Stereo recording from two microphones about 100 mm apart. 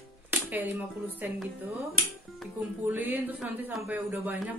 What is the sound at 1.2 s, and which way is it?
Speech, 20° right (ahead or behind).